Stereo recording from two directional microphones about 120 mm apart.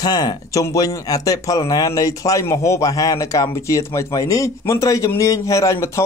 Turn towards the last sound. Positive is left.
turn(degrees=25)  # may be behind; listen again after turning